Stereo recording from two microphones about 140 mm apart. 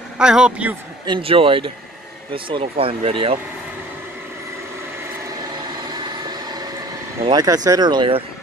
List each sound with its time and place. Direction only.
0.2 s a man's voice: 5° right (ahead or behind)
1.0 s speech: 35° right (ahead or behind)
7.2 s speech: 30° right (ahead or behind)